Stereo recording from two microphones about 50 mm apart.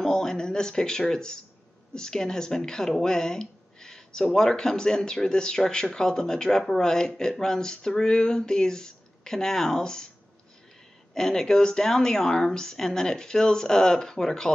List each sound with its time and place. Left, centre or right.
0.0 s speech: centre
11.1 s speech: centre